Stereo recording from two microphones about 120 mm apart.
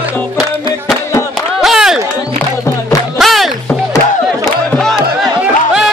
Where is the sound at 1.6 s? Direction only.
5° right (ahead or behind).